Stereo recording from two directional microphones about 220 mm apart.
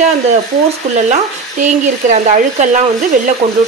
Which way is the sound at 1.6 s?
35° right (ahead or behind).